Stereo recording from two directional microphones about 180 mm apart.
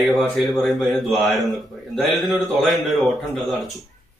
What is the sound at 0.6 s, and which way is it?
A man's voice, centre (ahead or behind).